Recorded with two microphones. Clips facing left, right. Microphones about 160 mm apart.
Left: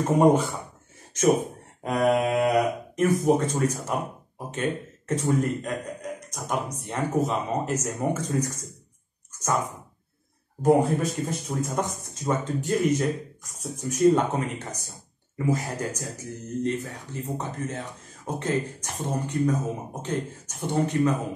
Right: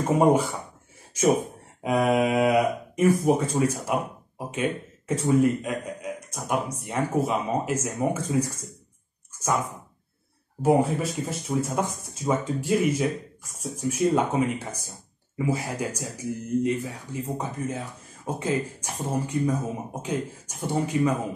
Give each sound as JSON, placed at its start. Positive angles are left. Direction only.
{"t": 0.2, "sound": "speech", "side_deg": -10}
{"t": 1.8, "sound": "speech", "side_deg": -5}
{"t": 10.6, "sound": "speech", "side_deg": -5}